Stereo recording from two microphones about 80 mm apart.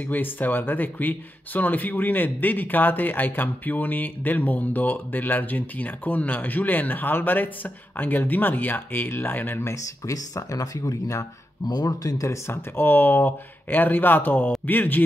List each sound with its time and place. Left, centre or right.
0.0 s speech: left
10.1 s speech: left